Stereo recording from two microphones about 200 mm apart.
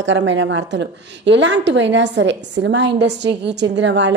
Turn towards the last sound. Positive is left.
turn(degrees=-65)  # may be behind; listen again after turning